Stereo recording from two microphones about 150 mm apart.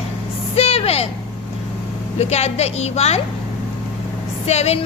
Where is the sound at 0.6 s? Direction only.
40° left (ahead or behind).